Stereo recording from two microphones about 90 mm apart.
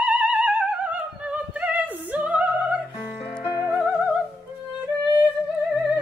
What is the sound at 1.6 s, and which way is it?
Opera, 15° right (ahead or behind).